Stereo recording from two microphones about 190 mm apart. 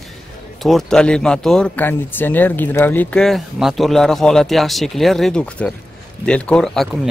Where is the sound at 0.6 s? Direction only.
Centre (ahead or behind).